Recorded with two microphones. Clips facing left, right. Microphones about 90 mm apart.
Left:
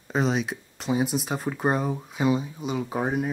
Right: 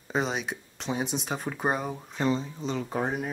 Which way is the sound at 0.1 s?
Centre (ahead or behind).